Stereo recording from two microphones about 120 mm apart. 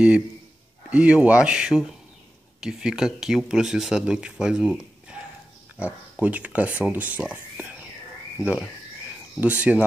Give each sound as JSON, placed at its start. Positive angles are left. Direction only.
{"t": 0.8, "sound": "speech", "side_deg": -10}
{"t": 9.4, "sound": "speech", "side_deg": -15}